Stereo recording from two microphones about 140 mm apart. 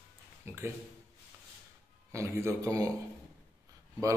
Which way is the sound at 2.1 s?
20° right (ahead or behind).